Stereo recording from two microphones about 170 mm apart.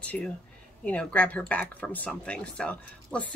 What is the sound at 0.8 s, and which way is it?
A woman's voice, 10° left (ahead or behind).